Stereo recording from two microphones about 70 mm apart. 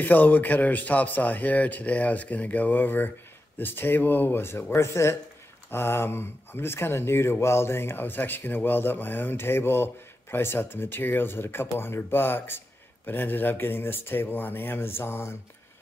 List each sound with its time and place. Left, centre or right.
0.0 s speech: left